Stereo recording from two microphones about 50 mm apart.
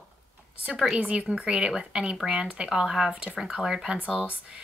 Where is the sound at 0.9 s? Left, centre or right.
Right.